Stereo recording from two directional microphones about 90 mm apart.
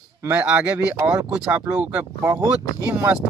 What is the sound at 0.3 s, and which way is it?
Speech, 15° right (ahead or behind).